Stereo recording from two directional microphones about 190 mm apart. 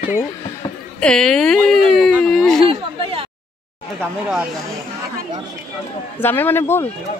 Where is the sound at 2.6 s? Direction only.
30° right (ahead or behind).